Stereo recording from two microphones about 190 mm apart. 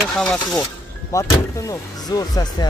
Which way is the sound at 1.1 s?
15° left (ahead or behind).